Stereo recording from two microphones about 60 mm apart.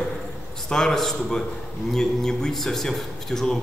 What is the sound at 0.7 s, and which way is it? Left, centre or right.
A man's voice, centre.